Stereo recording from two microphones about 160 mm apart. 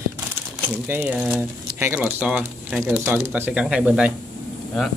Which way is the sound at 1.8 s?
10° right (ahead or behind).